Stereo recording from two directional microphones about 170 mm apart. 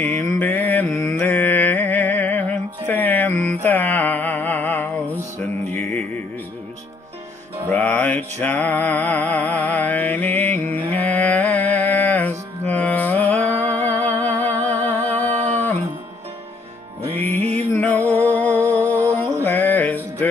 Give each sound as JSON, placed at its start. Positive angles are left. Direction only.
{"t": 0.0, "sound": "mantra", "side_deg": 10}
{"t": 0.7, "sound": "music", "side_deg": 10}
{"t": 5.7, "sound": "jingle bell", "side_deg": 10}
{"t": 7.7, "sound": "mantra", "side_deg": 10}
{"t": 17.1, "sound": "music", "side_deg": 10}
{"t": 17.4, "sound": "music", "side_deg": -40}
{"t": 17.6, "sound": "music", "side_deg": 10}
{"t": 18.9, "sound": "music", "side_deg": -15}
{"t": 19.4, "sound": "music", "side_deg": 10}